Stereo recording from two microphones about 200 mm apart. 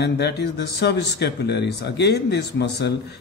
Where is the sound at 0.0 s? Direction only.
55° left (ahead or behind).